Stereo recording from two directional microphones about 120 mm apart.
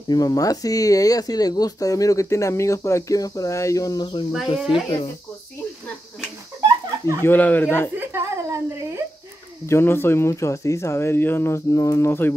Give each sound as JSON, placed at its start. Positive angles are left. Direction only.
{"t": 0.1, "sound": "speech", "side_deg": 30}
{"t": 4.6, "sound": "speech", "side_deg": -5}
{"t": 7.2, "sound": "speech", "side_deg": 15}
{"t": 8.1, "sound": "a sound", "side_deg": -20}
{"t": 9.7, "sound": "speech", "side_deg": 20}